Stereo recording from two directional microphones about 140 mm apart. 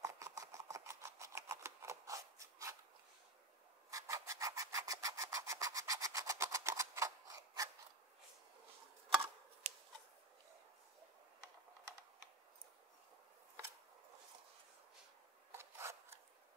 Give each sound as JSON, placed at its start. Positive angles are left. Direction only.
{"t": 0.0, "sound": "a sound", "side_deg": -25}
{"t": 3.9, "sound": "rub", "side_deg": -20}
{"t": 9.6, "sound": "scissors", "side_deg": -60}
{"t": 15.5, "sound": "filing", "side_deg": -20}